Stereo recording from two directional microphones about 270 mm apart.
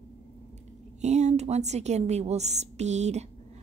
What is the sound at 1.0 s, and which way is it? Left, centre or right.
A woman's voice, right.